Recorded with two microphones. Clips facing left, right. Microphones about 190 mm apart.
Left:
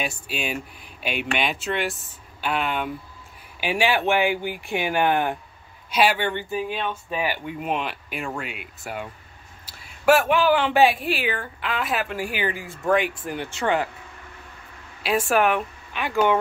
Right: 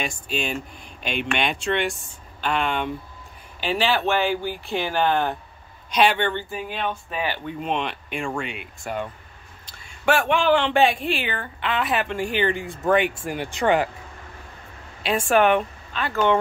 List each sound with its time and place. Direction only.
0.0 s speech: 5° left (ahead or behind)
13.4 s speech: 15° right (ahead or behind)
15.0 s speech: centre (ahead or behind)
15.9 s speech: 15° left (ahead or behind)